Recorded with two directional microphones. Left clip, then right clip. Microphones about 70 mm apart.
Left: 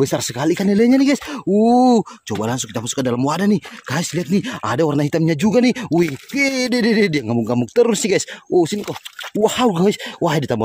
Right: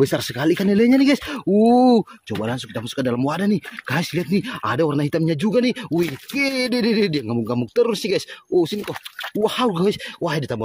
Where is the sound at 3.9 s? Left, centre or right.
Left.